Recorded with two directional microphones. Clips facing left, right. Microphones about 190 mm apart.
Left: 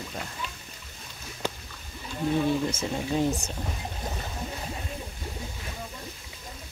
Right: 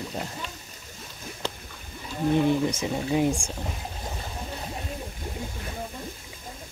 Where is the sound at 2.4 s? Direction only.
15° right (ahead or behind).